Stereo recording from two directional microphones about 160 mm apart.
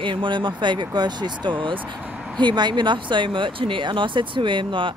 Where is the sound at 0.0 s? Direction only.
30° right (ahead or behind).